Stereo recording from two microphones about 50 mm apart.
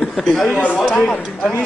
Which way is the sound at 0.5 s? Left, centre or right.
Left.